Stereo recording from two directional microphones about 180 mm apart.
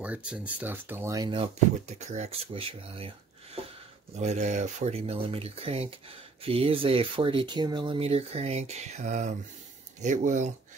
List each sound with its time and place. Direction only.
0.0 s speech: 5° right (ahead or behind); by 1.5 s 25° right (ahead or behind)
2.0 s speech: 40° right (ahead or behind)
4.2 s speech: 40° right (ahead or behind)